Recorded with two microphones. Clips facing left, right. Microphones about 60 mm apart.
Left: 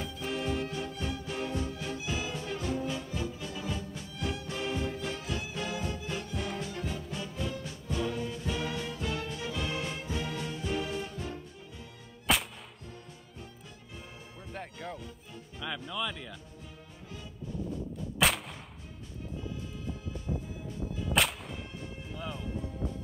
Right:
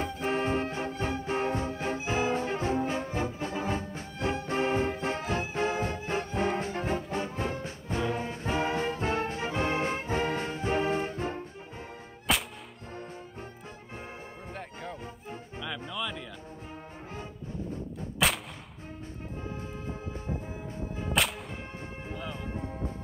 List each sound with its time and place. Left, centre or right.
0.0 s music: right
12.3 s whip: centre
15.9 s music: centre
17.1 s music: right
18.1 s artillery fire: centre
19.2 s music: right
21.1 s whip: centre
21.5 s music: right